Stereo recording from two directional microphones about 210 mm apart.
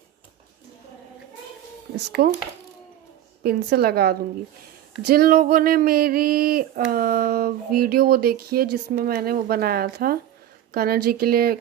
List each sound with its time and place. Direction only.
2.2 s speech: 50° right (ahead or behind)
3.4 s speech: 50° right (ahead or behind)